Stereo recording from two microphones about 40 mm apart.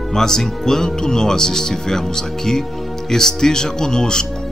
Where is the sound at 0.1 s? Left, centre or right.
Centre.